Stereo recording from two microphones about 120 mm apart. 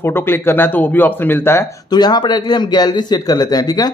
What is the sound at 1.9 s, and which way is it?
Speech, 35° left (ahead or behind).